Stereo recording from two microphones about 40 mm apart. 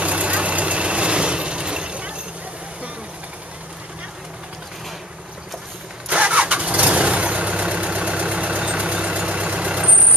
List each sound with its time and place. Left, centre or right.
0.0 s vehicle: right
6.0 s engine starting: right